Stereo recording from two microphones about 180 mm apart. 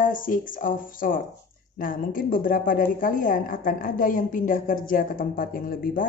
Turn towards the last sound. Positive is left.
turn(degrees=50)  # may be behind; listen again after turning